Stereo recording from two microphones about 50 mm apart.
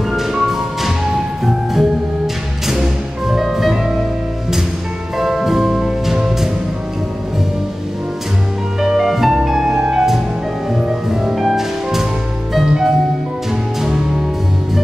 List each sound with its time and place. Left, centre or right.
0.1 s music: centre
5.2 s music: centre
8.8 s music: centre